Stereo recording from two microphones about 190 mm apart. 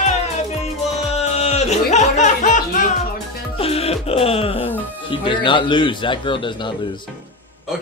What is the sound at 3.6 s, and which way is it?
Music, 30° left (ahead or behind).